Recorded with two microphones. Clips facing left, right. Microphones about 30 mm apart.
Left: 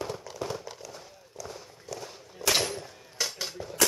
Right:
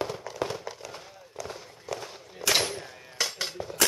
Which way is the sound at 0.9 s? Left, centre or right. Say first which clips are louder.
Right 4 dB; right.